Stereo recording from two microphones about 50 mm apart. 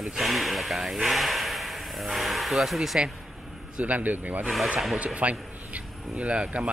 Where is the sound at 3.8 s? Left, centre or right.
Right.